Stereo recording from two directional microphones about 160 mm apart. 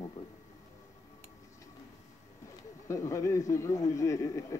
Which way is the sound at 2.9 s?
20° left (ahead or behind).